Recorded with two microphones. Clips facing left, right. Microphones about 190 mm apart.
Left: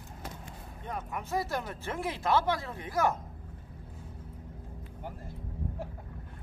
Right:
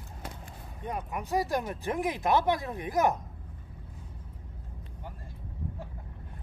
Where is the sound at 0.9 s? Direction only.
15° right (ahead or behind).